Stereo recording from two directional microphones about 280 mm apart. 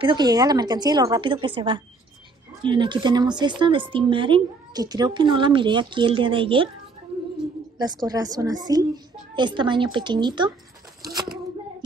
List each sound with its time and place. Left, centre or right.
0.0 s speech: centre
7.7 s speech: centre